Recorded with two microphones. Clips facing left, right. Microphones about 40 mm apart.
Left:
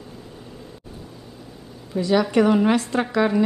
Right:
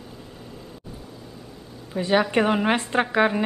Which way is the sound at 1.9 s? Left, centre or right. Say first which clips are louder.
Left 2 dB; right.